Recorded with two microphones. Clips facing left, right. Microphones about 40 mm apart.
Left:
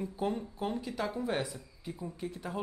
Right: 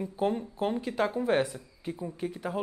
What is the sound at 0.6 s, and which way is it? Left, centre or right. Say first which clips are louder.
Speech: right 6 dB; right.